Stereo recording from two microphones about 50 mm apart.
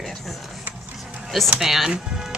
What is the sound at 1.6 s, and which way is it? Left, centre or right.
Speech, centre.